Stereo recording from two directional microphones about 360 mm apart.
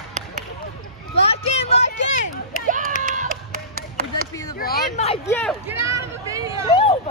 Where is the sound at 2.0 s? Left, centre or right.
Left.